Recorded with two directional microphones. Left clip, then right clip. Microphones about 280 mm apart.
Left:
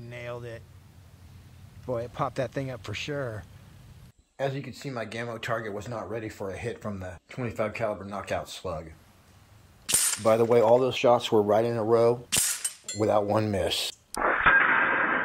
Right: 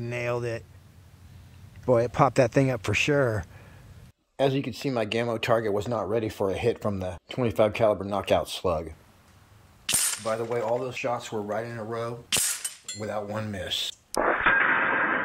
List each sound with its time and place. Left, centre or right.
0.0 s speech: right
1.9 s speech: right
9.8 s a sound: centre
10.3 s speech: left
12.3 s a sound: centre
13.0 s speech: left
14.1 s radio: centre